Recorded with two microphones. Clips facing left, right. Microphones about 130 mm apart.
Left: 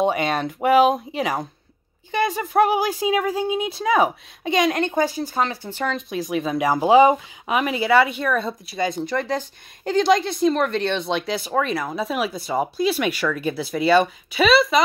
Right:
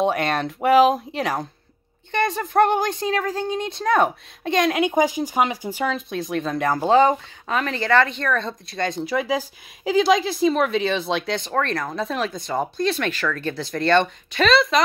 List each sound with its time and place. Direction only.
0.0 s speech: centre (ahead or behind)
4.8 s speech: 15° right (ahead or behind); by 14.8 s 5° left (ahead or behind)